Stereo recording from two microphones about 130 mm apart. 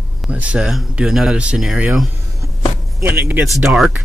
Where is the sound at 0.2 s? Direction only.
10° right (ahead or behind).